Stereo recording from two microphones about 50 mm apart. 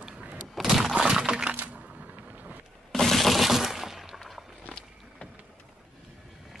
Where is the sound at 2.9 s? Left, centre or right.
Centre.